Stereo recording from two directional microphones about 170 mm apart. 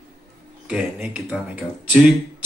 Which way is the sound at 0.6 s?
5° right (ahead or behind).